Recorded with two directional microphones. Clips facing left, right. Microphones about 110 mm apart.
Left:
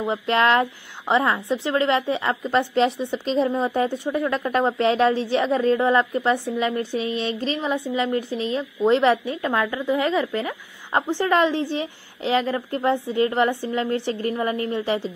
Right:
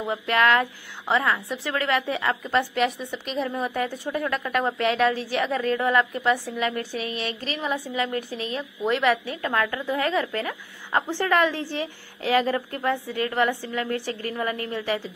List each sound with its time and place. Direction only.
0.0 s speech: 25° left (ahead or behind)